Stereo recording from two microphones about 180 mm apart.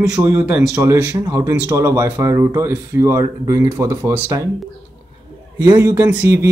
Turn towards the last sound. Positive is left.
turn(degrees=-15)  # may be behind; listen again after turning